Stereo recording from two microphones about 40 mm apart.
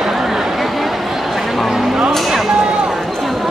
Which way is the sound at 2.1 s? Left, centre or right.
Centre.